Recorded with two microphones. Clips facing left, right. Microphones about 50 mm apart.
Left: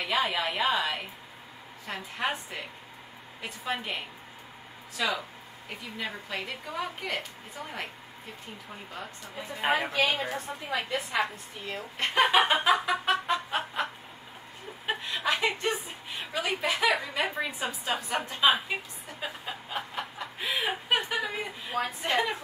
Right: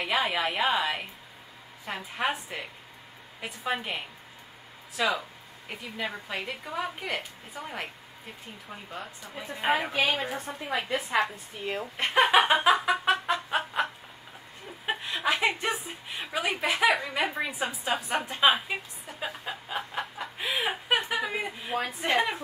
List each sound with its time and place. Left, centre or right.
0.0 s a woman's voice: centre
9.0 s a woman's voice: centre
11.6 s speech: right
12.0 s a woman's voice: centre
12.4 s chicken: centre
14.9 s a woman's voice: centre
18.5 s a woman's voice: centre
19.1 s chuckle: centre